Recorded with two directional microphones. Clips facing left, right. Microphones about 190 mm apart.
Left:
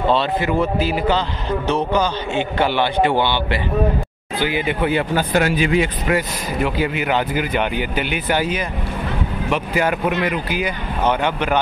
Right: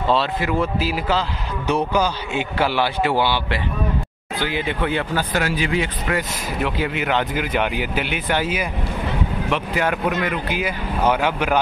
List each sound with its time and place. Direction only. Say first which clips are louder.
0.1 s a man's voice: even; centre (ahead or behind)
6.6 s a man's voice: left 2 dB; centre (ahead or behind)
9.5 s a man's voice: left 3 dB; 5° left (ahead or behind)
10.6 s speech: right 1 dB; 5° right (ahead or behind)